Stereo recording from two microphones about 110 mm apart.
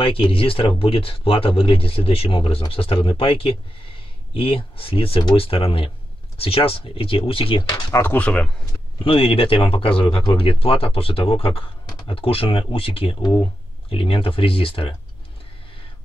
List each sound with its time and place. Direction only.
0.0 s speech: 55° left (ahead or behind)
7.7 s speech: 20° left (ahead or behind)
9.0 s speech: 55° left (ahead or behind)